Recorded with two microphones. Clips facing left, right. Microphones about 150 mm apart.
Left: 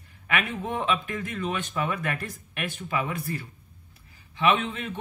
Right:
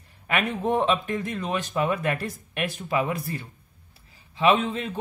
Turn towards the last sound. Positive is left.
turn(degrees=-35)  # may be behind; listen again after turning